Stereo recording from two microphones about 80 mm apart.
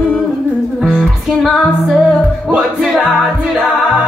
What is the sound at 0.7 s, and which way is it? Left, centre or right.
Music, centre.